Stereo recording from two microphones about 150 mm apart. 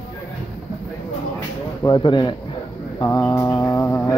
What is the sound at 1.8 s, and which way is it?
Speech, 30° left (ahead or behind).